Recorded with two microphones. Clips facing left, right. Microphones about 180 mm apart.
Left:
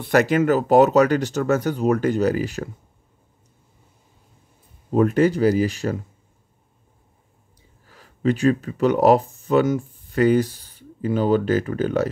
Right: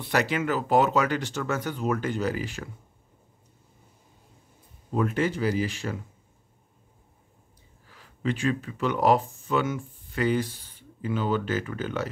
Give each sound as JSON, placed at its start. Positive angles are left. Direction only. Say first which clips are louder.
{"t": 0.0, "sound": "speech", "louder": "left 8 dB", "side_deg": 50}
{"t": 4.9, "sound": "speech", "louder": "left 8 dB", "side_deg": 40}
{"t": 7.9, "sound": "speech", "louder": "left 8 dB", "side_deg": 40}